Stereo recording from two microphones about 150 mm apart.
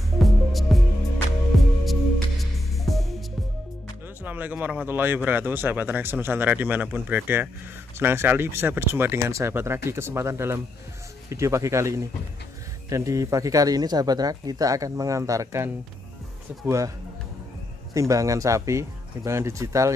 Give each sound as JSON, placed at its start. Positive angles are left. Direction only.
{"t": 0.2, "sound": "music", "side_deg": 0}
{"t": 4.2, "sound": "speech", "side_deg": -10}
{"t": 17.9, "sound": "speech", "side_deg": -20}